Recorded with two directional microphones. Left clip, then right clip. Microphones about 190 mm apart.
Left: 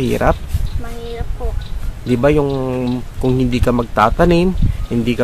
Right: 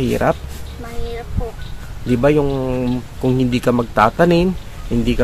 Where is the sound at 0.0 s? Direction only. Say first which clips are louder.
Left 1 dB; 15° left (ahead or behind).